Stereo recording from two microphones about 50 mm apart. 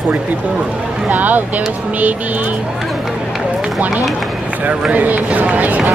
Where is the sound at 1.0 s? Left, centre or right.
Right.